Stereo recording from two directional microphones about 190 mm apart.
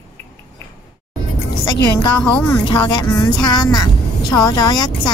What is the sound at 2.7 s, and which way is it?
Speech, 20° left (ahead or behind).